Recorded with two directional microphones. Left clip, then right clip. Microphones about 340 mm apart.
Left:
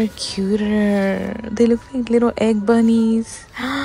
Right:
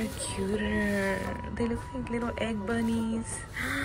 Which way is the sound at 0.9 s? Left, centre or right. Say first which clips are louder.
Left 10 dB; left.